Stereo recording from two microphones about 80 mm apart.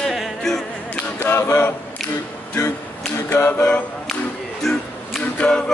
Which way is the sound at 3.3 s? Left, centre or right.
Left.